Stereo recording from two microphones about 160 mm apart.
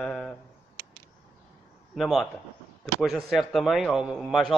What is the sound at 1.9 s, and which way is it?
A man's voice, centre (ahead or behind).